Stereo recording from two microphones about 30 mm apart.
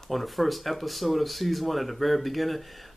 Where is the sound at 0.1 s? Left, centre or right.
Centre.